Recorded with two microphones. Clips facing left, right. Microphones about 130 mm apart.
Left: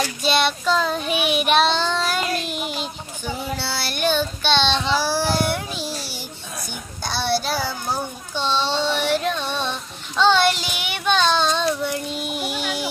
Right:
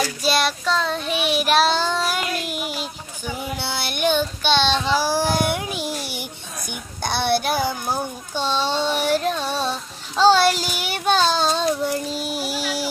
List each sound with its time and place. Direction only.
0.2 s child singing: 5° right (ahead or behind)
3.5 s child singing: 20° right (ahead or behind)
7.0 s child singing: 55° right (ahead or behind)
7.5 s a sound: 15° right (ahead or behind)
8.4 s child singing: 45° right (ahead or behind)
12.4 s a sound: 40° right (ahead or behind)